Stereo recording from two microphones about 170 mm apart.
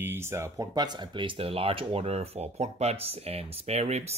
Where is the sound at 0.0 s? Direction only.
15° right (ahead or behind).